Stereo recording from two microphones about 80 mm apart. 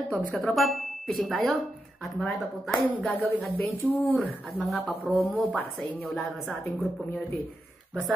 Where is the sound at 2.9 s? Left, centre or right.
Left.